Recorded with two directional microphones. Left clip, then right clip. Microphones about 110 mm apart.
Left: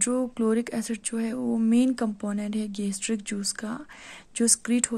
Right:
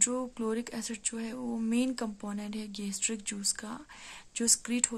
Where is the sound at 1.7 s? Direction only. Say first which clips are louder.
Left 7 dB; 30° left (ahead or behind).